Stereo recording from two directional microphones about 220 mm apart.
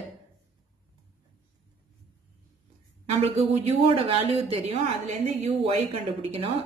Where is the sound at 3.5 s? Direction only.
25° right (ahead or behind).